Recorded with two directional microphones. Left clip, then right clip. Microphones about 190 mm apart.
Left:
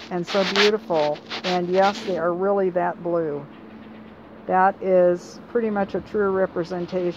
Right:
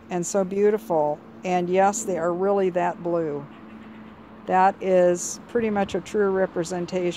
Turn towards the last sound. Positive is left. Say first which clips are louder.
# left 1 dB
turn(degrees=-30)  # may be behind; listen again after turning